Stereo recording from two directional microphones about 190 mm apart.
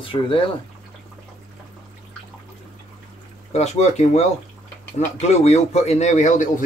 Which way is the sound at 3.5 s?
35° left (ahead or behind).